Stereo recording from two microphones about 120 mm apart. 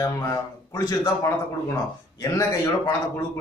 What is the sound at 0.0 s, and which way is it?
A man's voice, 30° left (ahead or behind).